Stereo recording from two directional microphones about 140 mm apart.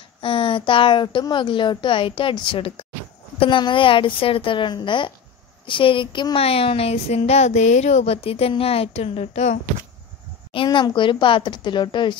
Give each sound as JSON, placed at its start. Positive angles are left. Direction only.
{"t": 0.2, "sound": "a woman's voice", "side_deg": 40}
{"t": 10.5, "sound": "a woman's voice", "side_deg": 35}